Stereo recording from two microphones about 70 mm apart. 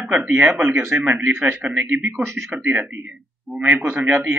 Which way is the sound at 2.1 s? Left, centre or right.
Right.